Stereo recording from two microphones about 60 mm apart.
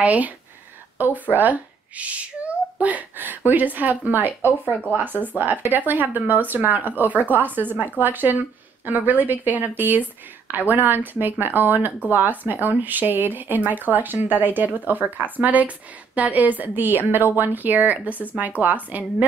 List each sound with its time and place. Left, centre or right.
0.0 s a child's voice: right